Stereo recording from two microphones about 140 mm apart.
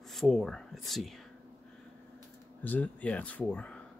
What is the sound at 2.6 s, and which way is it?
Speech, 10° left (ahead or behind).